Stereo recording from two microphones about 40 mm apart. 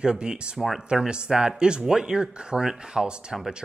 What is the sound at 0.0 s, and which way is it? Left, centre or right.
Speech, right.